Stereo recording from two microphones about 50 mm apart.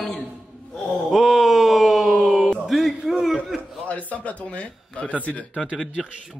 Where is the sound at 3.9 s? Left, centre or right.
Left.